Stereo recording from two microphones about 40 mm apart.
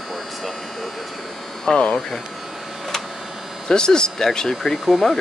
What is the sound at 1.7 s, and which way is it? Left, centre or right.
Speech, left.